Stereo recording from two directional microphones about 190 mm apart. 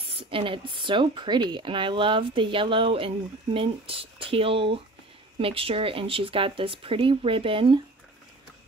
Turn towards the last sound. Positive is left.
turn(degrees=-30)  # may be behind; listen again after turning